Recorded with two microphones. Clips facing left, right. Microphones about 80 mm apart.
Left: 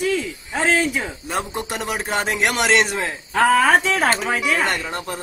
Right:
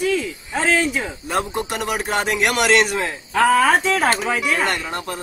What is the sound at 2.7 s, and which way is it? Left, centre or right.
Speech, centre.